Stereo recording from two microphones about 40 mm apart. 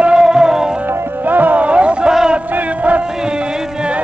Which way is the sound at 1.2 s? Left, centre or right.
Right.